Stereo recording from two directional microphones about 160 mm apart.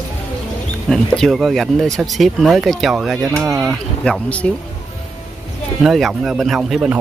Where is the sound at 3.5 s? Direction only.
20° right (ahead or behind).